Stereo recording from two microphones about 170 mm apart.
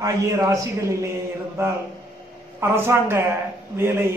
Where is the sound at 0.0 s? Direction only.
20° right (ahead or behind).